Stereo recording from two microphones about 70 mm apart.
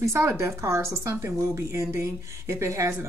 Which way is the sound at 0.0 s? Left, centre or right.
Right.